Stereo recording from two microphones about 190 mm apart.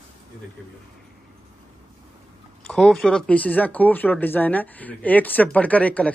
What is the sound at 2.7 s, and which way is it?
Speech, 5° left (ahead or behind).